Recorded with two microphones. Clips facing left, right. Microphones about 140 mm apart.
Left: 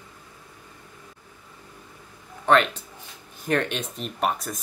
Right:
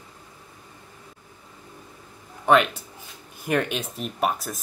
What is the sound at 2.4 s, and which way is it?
Speech, 10° right (ahead or behind).